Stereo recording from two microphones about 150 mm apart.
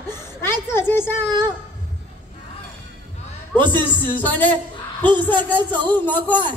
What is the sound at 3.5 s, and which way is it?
Speech, 30° right (ahead or behind).